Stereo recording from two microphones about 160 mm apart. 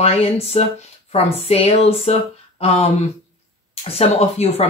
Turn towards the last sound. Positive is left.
turn(degrees=40)  # may be behind; listen again after turning